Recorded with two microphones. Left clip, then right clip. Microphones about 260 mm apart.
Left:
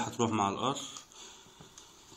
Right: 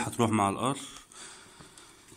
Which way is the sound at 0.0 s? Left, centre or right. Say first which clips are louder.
Right 3 dB; right.